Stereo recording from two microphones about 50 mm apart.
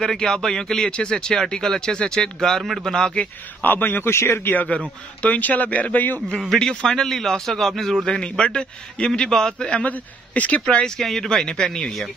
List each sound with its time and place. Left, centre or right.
0.0 s speech: centre
3.6 s a man's voice: left
4.1 s speech: left
4.5 s a man's voice: left
6.6 s speech: centre
8.1 s speech: centre
9.8 s a man's voice: left
10.6 s speech: centre
11.0 s speech: centre